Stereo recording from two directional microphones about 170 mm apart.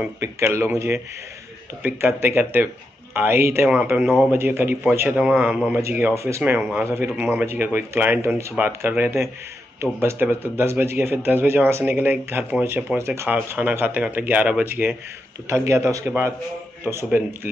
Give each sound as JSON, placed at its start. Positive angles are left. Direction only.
{"t": 0.0, "sound": "speech", "side_deg": -15}